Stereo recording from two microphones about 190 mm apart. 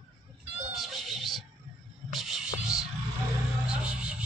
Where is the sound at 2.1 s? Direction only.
Centre (ahead or behind).